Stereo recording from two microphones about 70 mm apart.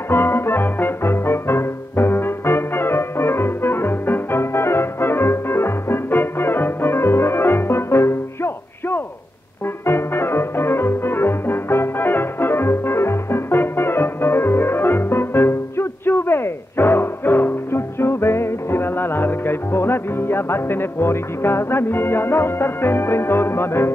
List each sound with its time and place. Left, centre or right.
0.1 s music: left